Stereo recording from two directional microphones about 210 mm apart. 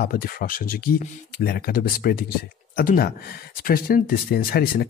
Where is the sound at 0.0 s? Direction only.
45° left (ahead or behind).